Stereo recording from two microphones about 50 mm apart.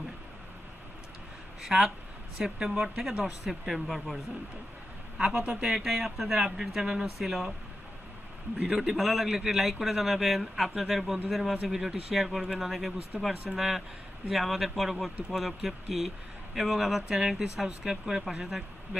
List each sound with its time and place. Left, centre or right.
1.6 s a man's voice: centre
5.1 s a man's voice: centre
5.4 s speech: right
5.7 s a man's voice: centre
8.5 s a man's voice: centre